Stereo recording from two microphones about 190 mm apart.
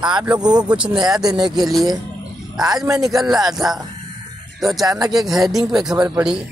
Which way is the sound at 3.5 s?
Centre (ahead or behind).